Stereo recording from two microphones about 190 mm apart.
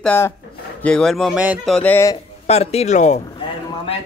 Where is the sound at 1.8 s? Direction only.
10° left (ahead or behind).